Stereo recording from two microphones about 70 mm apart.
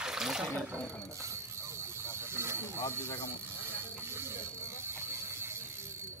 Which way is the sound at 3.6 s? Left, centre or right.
Right.